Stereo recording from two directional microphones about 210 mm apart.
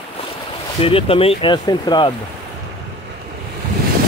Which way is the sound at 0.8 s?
25° left (ahead or behind).